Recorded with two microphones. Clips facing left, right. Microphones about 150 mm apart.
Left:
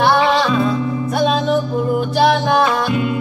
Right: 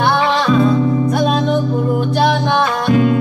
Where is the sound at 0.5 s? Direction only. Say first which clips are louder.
Right 4 dB; 5° left (ahead or behind).